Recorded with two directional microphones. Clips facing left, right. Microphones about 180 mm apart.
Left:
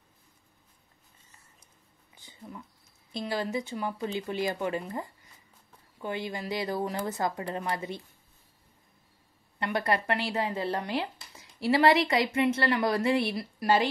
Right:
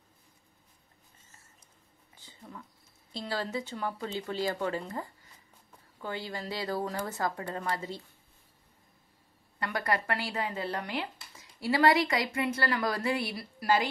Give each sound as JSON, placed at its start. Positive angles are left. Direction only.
{"t": 3.1, "sound": "speech", "side_deg": 20}
{"t": 9.6, "sound": "speech", "side_deg": 25}